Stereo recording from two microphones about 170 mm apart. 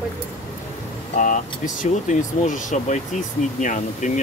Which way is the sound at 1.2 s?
45° left (ahead or behind).